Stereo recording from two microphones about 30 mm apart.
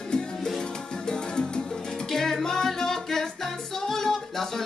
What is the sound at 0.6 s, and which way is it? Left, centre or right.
Music, left.